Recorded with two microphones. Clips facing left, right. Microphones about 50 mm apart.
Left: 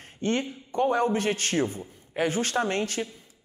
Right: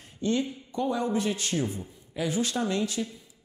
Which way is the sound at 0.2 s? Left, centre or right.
Left.